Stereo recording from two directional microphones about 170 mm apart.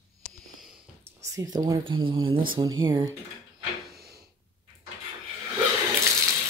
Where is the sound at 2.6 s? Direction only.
20° right (ahead or behind).